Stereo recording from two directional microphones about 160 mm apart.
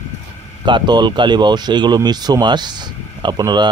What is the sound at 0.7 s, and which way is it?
Speech, 30° right (ahead or behind).